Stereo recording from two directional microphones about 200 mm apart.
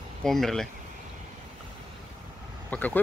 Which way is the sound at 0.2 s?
Centre (ahead or behind).